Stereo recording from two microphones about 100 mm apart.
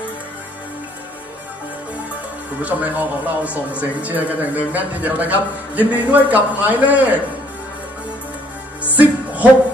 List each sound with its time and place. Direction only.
2.6 s speech: 15° right (ahead or behind)
8.8 s music: 15° right (ahead or behind)